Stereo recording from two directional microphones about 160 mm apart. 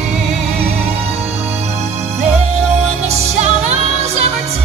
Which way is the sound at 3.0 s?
45° right (ahead or behind).